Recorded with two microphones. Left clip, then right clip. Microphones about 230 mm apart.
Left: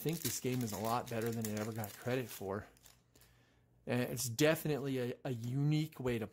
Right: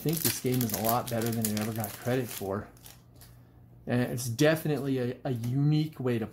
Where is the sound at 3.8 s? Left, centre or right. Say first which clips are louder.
Right 6 dB; left.